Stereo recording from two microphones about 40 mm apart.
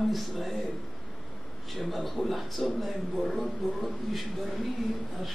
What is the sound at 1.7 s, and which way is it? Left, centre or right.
A man's voice, centre.